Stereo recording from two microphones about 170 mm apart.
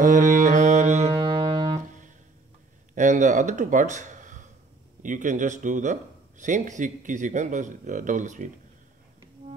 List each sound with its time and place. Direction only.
0.0 s music: 50° right (ahead or behind); by 1.8 s 30° right (ahead or behind)
2.9 s speech: 45° right (ahead or behind)